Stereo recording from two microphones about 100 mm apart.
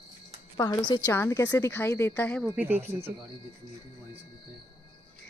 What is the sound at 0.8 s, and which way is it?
Speech, 45° left (ahead or behind).